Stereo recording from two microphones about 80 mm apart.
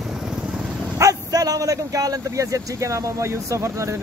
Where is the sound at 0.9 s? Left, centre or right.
Right.